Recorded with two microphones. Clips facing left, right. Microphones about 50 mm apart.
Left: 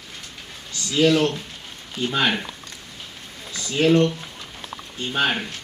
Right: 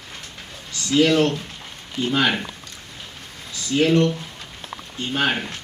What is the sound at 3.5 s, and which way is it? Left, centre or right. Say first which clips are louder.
Speech: even; left.